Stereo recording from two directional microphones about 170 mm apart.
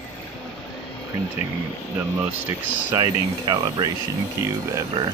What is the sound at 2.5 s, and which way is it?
Speech, 20° right (ahead or behind).